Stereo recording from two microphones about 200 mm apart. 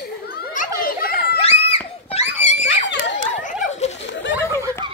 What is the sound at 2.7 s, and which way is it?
Screaming, 65° left (ahead or behind).